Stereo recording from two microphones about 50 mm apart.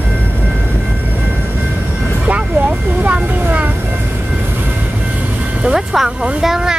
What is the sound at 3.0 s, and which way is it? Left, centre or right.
Vehicle, right.